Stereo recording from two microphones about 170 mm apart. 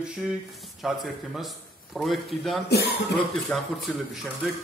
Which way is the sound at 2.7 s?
70° left (ahead or behind).